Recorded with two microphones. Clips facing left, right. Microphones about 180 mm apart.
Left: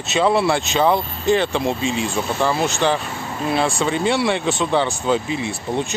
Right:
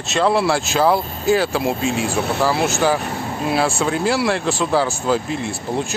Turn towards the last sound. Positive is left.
turn(degrees=0)  # may be behind; listen again after turning